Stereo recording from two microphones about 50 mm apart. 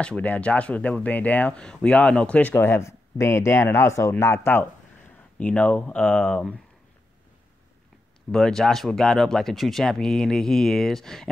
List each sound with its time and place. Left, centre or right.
0.2 s speech: left
1.6 s speech: centre
2.5 s speech: left
5.4 s speech: left
8.3 s speech: centre